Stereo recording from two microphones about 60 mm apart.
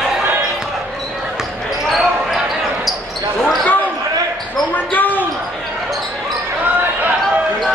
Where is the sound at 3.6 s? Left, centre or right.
Left.